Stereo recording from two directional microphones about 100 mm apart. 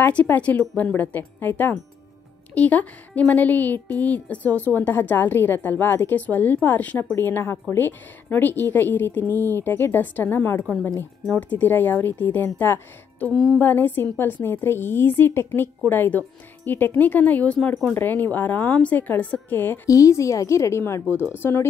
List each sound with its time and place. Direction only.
0.0 s a woman's voice: 15° left (ahead or behind)
19.9 s a woman's voice: 30° left (ahead or behind)